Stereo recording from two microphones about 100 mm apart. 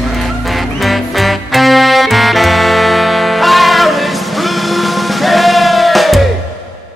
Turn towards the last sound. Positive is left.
turn(degrees=0)  # may be behind; listen again after turning